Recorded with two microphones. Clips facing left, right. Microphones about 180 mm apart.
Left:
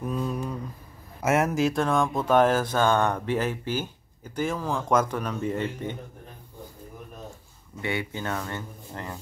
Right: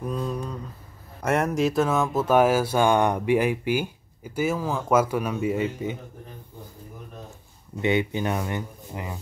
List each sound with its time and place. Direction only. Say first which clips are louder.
0.0 s mantra: even; 5° left (ahead or behind)
1.2 s speech: even; 5° left (ahead or behind)
7.8 s speech: right 7 dB; 20° right (ahead or behind)